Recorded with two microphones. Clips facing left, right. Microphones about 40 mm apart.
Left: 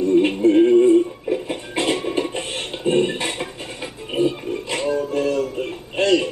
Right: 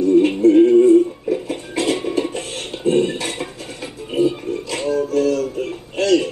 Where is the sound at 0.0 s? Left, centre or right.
Left.